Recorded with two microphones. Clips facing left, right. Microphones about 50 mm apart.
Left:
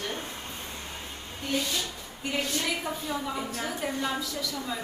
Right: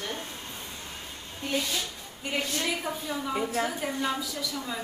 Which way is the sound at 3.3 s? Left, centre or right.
Right.